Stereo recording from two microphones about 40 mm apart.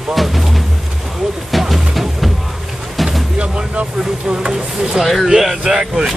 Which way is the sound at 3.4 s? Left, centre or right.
Right.